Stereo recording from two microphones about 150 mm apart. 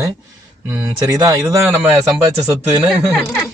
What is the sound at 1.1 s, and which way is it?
Speech, 25° right (ahead or behind).